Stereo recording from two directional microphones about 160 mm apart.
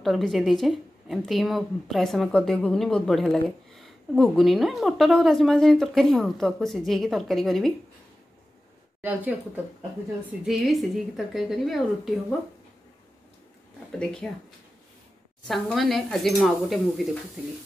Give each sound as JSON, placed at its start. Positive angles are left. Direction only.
{"t": 0.0, "sound": "a woman's voice", "side_deg": 0}
{"t": 9.0, "sound": "a woman's voice", "side_deg": -10}
{"t": 10.4, "sound": "a woman's voice", "side_deg": 0}
{"t": 13.9, "sound": "a woman's voice", "side_deg": 5}
{"t": 15.4, "sound": "a woman's voice", "side_deg": 0}